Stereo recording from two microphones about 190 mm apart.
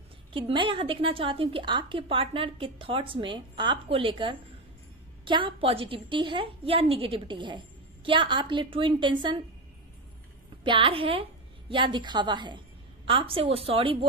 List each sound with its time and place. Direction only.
0.3 s a woman's voice: 25° right (ahead or behind)
10.6 s a woman's voice: 25° right (ahead or behind)